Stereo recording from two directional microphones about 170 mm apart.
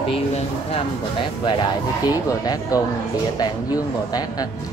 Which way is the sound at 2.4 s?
20° left (ahead or behind).